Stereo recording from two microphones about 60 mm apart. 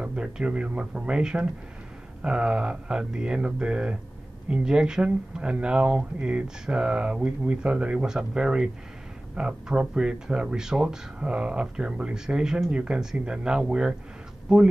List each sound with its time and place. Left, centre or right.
0.0 s speech: centre